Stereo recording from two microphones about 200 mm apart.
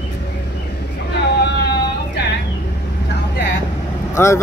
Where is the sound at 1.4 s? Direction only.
55° left (ahead or behind).